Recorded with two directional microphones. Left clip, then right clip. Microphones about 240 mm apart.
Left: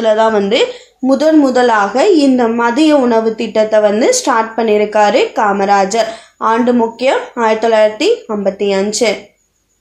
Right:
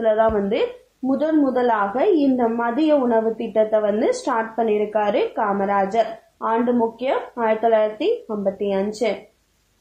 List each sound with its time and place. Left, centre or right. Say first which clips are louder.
0.0 s speech: left 7 dB; left